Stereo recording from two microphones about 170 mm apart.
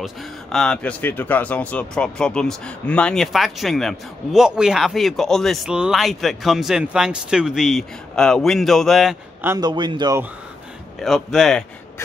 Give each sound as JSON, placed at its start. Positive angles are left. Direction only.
{"t": 0.0, "sound": "speech", "side_deg": 0}
{"t": 9.6, "sound": "speech", "side_deg": -25}
{"t": 11.0, "sound": "speech", "side_deg": 0}